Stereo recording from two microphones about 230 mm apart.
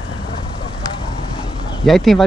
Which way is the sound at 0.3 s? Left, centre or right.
Left.